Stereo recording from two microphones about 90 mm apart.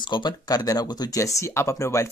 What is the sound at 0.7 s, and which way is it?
Speech, 45° left (ahead or behind).